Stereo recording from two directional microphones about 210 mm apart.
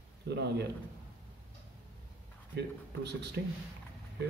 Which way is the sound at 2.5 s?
50° right (ahead or behind).